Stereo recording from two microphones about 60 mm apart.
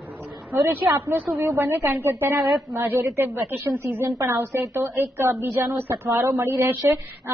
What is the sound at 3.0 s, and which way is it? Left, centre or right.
Speech, right.